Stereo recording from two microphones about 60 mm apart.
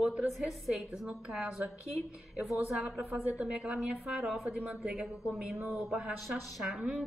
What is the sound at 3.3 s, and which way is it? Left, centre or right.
A woman's voice, centre.